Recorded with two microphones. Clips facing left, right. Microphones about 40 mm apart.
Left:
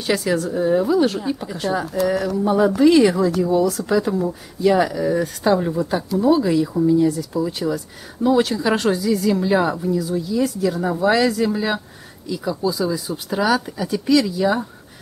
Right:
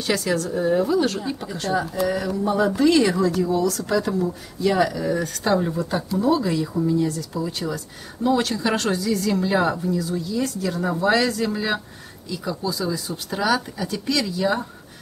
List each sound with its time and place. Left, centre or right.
0.0 s speech: centre